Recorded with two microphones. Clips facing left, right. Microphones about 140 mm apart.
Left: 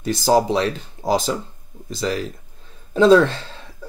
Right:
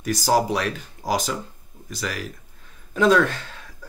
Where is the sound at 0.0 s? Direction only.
25° left (ahead or behind).